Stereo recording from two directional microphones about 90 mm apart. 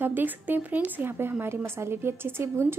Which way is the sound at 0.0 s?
20° right (ahead or behind).